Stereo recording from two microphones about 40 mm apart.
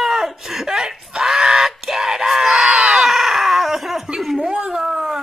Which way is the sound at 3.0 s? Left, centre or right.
Centre.